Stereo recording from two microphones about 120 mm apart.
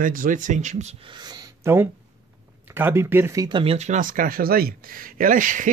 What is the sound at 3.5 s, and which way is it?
Speech, 55° right (ahead or behind).